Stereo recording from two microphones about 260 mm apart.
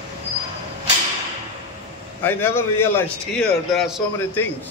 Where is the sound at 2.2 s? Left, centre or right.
Centre.